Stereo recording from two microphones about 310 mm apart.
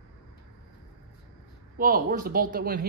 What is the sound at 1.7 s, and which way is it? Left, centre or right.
Speech, right.